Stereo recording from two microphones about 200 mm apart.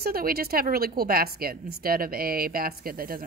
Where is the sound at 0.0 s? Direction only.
50° right (ahead or behind).